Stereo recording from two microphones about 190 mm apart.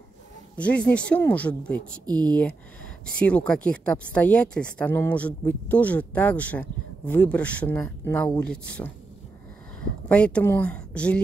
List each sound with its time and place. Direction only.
0.6 s speech: 5° left (ahead or behind)
2.0 s speech: 20° right (ahead or behind)
3.2 s speech: 5° left (ahead or behind)
10.0 s speech: 5° left (ahead or behind)